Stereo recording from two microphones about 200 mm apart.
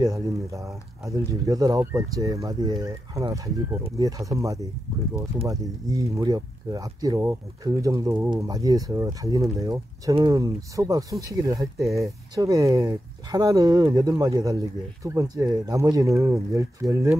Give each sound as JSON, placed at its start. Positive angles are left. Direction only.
{"t": 0.0, "sound": "speech", "side_deg": -15}